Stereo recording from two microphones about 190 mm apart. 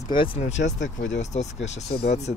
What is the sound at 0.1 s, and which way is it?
Speech, 25° left (ahead or behind).